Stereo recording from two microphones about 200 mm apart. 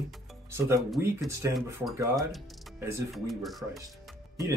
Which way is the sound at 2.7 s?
15° right (ahead or behind).